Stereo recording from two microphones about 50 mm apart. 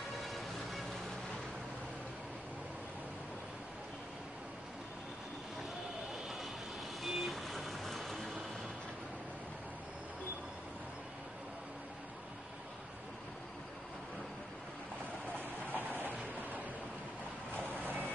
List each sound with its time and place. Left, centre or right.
0.2 s music: centre
6.1 s vehicle: centre
15.7 s a sound: right
17.8 s vehicle: right